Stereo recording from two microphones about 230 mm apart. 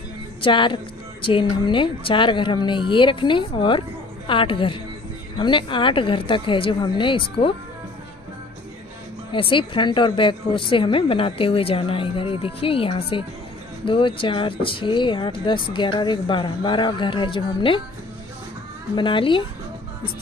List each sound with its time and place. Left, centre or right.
0.4 s a woman's voice: left
9.3 s speech: left
18.9 s speech: left